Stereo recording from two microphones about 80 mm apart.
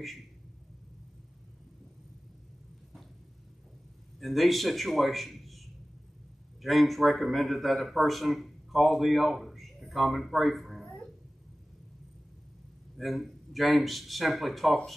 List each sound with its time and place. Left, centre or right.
4.2 s a man's voice: centre
6.6 s a man's voice: centre
12.9 s speech: centre